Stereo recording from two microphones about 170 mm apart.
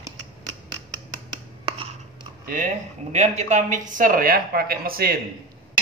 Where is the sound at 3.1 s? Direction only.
40° right (ahead or behind); by 5.1 s 60° right (ahead or behind).